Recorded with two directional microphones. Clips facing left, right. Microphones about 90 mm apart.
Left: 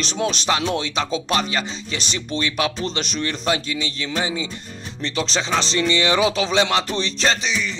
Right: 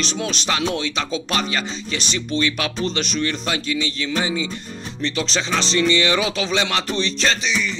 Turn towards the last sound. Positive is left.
turn(degrees=25)  # may be behind; listen again after turning